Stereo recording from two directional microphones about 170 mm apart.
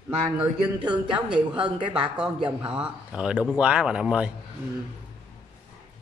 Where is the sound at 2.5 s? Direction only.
5° right (ahead or behind).